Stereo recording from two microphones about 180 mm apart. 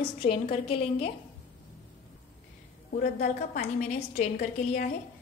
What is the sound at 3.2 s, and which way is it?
A woman's voice, 40° left (ahead or behind).